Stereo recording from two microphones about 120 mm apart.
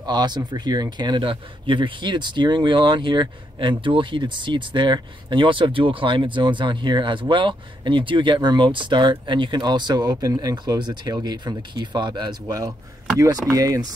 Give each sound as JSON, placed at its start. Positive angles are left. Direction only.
{"t": 0.0, "sound": "speech", "side_deg": -35}